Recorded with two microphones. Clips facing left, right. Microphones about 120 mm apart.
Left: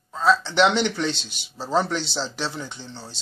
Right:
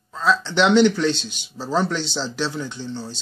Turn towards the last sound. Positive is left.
turn(degrees=15)  # may be behind; listen again after turning